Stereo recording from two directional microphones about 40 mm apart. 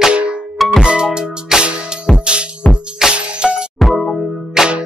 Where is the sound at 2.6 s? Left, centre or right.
Left.